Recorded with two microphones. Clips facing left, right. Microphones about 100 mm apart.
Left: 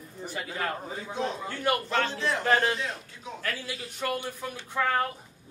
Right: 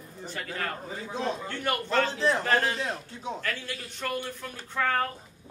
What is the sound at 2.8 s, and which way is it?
Speech, 30° right (ahead or behind).